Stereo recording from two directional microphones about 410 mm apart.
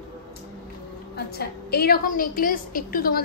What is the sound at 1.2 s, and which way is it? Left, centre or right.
A woman's voice, left.